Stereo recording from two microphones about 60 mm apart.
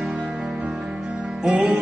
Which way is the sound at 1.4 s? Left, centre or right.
Right.